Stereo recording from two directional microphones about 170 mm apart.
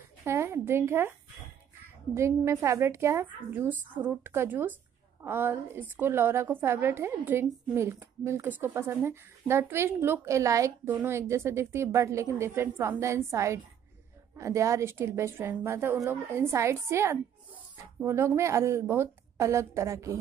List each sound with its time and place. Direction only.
0.2 s speech: 15° right (ahead or behind)
2.1 s a woman's voice: 15° right (ahead or behind)